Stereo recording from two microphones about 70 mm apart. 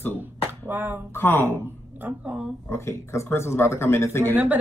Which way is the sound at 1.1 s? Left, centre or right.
Left.